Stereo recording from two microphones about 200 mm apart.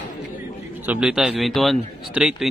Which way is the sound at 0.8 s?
5° right (ahead or behind).